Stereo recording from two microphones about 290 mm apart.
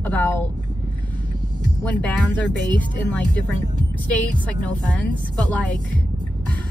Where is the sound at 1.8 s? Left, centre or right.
Centre.